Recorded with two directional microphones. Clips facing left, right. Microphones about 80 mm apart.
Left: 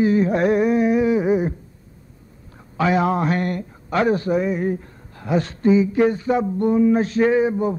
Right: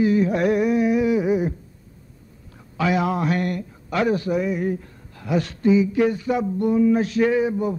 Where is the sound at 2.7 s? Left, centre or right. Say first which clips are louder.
Left 3 dB; left.